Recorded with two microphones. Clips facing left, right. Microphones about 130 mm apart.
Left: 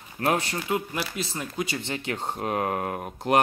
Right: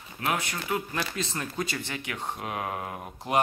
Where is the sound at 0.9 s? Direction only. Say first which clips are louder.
Left 1 dB; 10° left (ahead or behind).